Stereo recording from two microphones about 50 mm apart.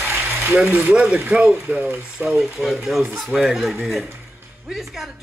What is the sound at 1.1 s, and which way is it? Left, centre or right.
Speech, right.